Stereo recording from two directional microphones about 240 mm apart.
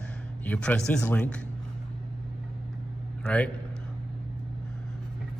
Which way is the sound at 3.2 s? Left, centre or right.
Centre.